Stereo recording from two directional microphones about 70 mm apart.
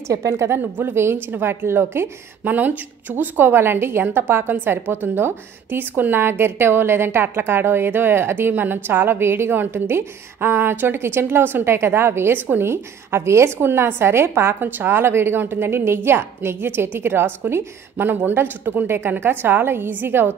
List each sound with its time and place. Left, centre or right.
0.1 s a woman's voice: right
0.6 s a woman's voice: right